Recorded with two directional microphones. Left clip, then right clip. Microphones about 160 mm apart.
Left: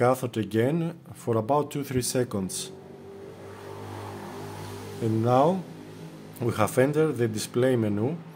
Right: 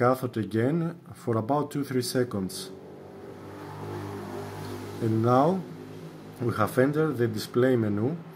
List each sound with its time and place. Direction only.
0.0 s speech: 20° left (ahead or behind)
5.2 s speech: 10° left (ahead or behind)
6.4 s speech: 20° left (ahead or behind)